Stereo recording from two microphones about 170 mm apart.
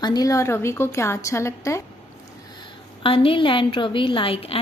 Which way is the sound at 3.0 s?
30° left (ahead or behind).